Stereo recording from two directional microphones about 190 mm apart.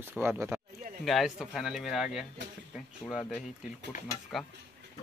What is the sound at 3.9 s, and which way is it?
Speech, 45° left (ahead or behind).